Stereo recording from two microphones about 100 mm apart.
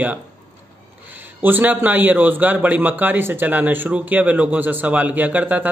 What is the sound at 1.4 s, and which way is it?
Speech, 20° right (ahead or behind).